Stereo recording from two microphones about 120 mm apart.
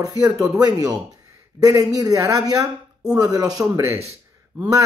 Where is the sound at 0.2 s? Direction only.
30° right (ahead or behind).